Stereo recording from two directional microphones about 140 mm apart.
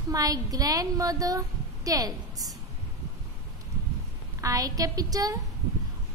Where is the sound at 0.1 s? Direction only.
25° right (ahead or behind).